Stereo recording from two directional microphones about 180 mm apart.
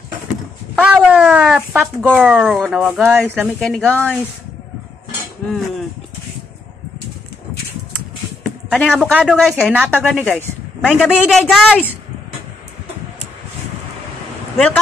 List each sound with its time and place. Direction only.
0.8 s a woman's voice: 5° right (ahead or behind)
3.4 s a woman's voice: 5° left (ahead or behind)
5.5 s a woman's voice: centre (ahead or behind)
8.5 s a sound: 5° left (ahead or behind)
9.2 s a woman's voice: centre (ahead or behind)
9.8 s a woman's voice: 10° right (ahead or behind)
10.2 s a woman's voice: 10° left (ahead or behind)